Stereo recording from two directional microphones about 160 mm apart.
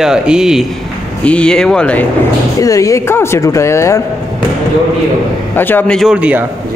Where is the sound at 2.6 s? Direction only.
20° left (ahead or behind).